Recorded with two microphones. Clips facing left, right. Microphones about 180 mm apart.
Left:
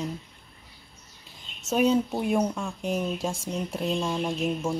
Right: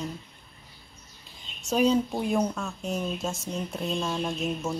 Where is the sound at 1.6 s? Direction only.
5° left (ahead or behind).